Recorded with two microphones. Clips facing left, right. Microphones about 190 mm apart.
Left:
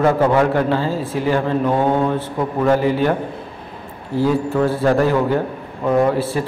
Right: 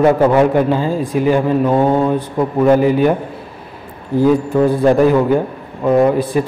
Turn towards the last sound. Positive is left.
turn(degrees=-15)  # may be behind; listen again after turning